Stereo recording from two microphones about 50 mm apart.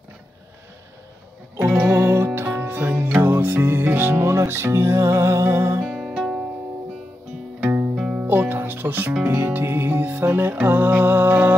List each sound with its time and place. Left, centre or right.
1.6 s music: right
5.9 s music: centre
7.6 s music: right